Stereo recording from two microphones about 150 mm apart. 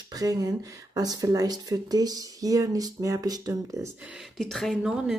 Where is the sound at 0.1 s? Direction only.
25° right (ahead or behind).